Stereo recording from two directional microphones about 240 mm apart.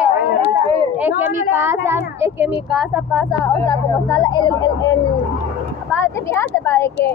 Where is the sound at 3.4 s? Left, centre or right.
Centre.